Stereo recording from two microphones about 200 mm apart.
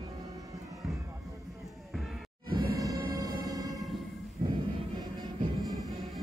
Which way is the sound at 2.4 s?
20° right (ahead or behind).